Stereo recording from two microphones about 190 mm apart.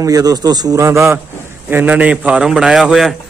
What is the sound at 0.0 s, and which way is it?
A man's voice, 20° right (ahead or behind).